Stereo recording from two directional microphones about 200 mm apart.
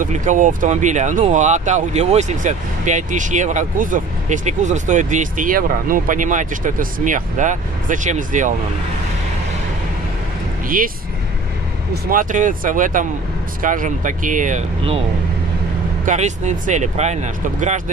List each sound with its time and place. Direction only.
0.0 s speech: 40° right (ahead or behind)
11.9 s speech: 45° right (ahead or behind)
16.1 s speech: 35° right (ahead or behind)